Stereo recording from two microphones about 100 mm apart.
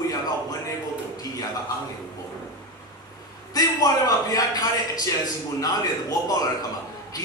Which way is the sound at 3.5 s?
40° left (ahead or behind).